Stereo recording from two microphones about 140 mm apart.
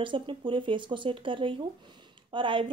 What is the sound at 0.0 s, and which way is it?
A woman's voice, 35° right (ahead or behind).